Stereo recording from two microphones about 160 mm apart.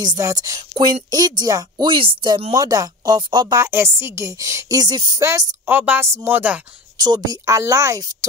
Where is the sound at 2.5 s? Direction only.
20° right (ahead or behind).